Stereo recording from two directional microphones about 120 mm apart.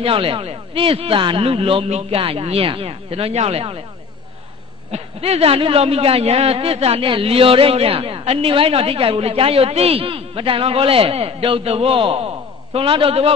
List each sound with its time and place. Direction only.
0.0 s a man's voice: 50° right (ahead or behind)
4.9 s a man's voice: 60° right (ahead or behind)